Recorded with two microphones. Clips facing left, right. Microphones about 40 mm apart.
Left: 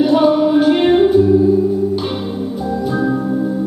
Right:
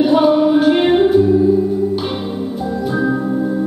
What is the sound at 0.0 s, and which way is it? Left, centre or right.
Music, centre.